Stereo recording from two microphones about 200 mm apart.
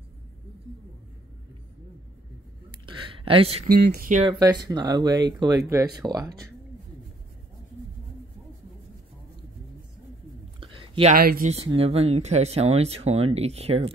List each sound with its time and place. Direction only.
2.9 s a sound: 25° right (ahead or behind)
3.7 s speech: 50° right (ahead or behind)
4.2 s speech: 25° right (ahead or behind)
10.6 s a sound: 25° right (ahead or behind)
11.1 s speech: 45° right (ahead or behind)
11.5 s speech: 30° right (ahead or behind)